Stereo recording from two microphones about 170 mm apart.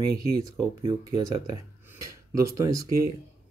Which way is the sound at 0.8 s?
30° right (ahead or behind).